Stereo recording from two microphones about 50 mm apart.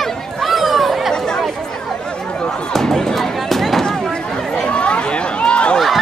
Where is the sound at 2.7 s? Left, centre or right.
Centre.